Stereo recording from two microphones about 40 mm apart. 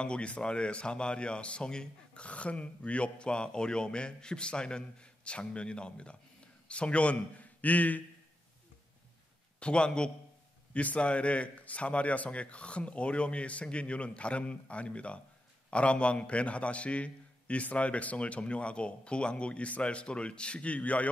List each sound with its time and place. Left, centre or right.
0.0 s a man's voice: left
9.6 s speech: left
10.7 s a man's voice: left